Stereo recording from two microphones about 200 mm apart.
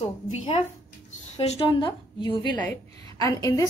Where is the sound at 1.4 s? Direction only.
30° left (ahead or behind).